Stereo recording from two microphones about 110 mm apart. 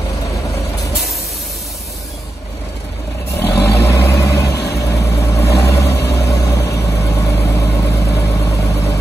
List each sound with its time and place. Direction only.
3.3 s vehicle: 25° left (ahead or behind)